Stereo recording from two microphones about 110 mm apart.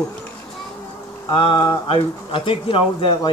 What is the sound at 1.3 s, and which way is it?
Speech, 50° left (ahead or behind).